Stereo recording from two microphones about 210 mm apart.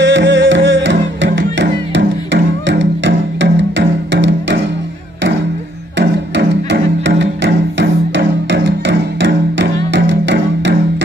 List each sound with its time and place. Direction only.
0.0 s music: 60° right (ahead or behind)
5.9 s music: 60° right (ahead or behind)